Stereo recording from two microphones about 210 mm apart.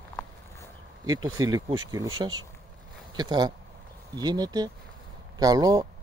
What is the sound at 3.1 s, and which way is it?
Speech, 20° right (ahead or behind).